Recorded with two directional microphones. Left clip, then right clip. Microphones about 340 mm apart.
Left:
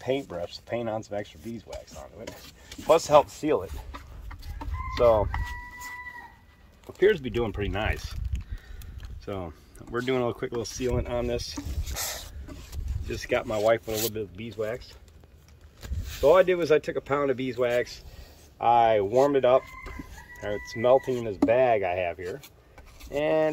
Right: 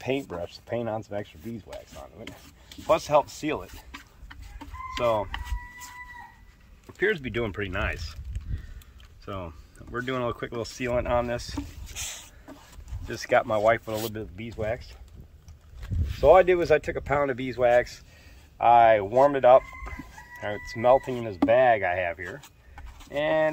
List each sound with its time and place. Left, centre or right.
0.3 s speech: right
2.4 s speech: centre
4.9 s speech: centre
5.4 s a sound: centre
7.0 s speech: centre
9.2 s speech: centre
11.9 s a sound: left
13.1 s speech: centre
16.2 s speech: centre
20.8 s speech: centre